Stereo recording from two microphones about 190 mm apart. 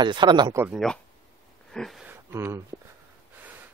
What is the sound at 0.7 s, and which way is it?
Speech, centre (ahead or behind).